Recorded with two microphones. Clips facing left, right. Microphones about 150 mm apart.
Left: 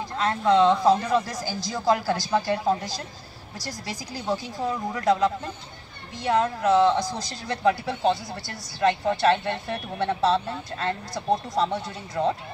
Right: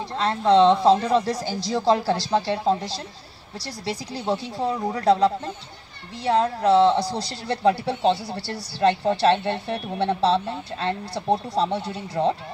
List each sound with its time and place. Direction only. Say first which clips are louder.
0.1 s speech: right 3 dB; 30° right (ahead or behind)